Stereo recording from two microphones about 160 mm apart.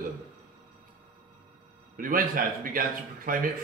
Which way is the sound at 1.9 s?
60° right (ahead or behind).